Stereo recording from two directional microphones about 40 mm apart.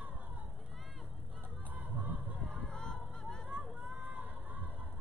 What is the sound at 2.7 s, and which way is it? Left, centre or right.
Honk, centre.